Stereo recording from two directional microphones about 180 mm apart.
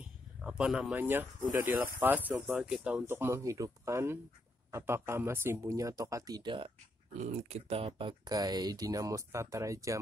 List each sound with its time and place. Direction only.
0.4 s speech: 5° right (ahead or behind); by 6.7 s 25° right (ahead or behind)
7.2 s speech: 40° right (ahead or behind); by 9.9 s 15° right (ahead or behind)